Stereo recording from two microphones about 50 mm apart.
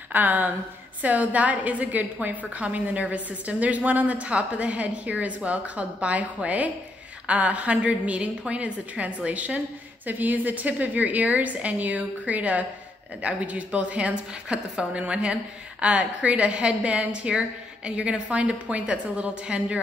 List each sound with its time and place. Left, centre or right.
0.1 s a woman's voice: right